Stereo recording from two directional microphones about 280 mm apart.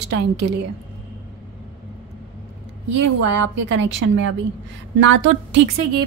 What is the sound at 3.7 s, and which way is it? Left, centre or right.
A woman's voice, right.